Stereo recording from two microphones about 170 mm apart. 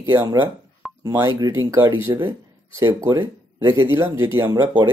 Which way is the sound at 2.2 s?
15° right (ahead or behind).